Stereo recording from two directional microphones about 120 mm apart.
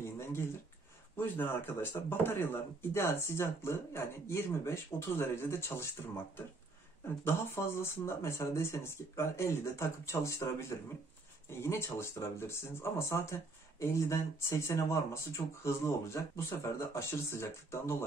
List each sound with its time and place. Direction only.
0.0 s a sound: 20° left (ahead or behind)
1.1 s speech: 15° left (ahead or behind)
7.2 s speech: 20° left (ahead or behind)